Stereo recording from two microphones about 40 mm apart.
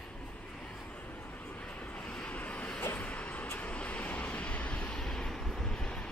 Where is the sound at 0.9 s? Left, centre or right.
Left.